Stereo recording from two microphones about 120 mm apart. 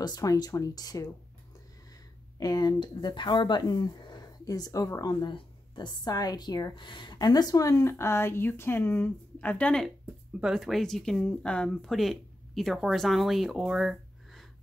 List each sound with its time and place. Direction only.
0.0 s speech: 30° left (ahead or behind)
2.3 s speech: 30° left (ahead or behind)
5.2 s speech: 40° left (ahead or behind); by 14.4 s 5° right (ahead or behind)